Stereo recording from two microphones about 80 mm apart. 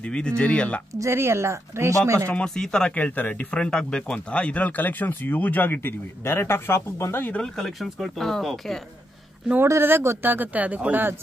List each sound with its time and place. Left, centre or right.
0.0 s speech: centre
0.9 s speech: right
2.2 s speech: centre; by 7.3 s left
7.3 s speech: centre
9.6 s speech: right